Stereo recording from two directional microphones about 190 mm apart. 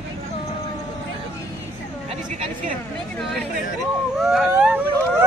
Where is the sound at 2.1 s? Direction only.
45° right (ahead or behind).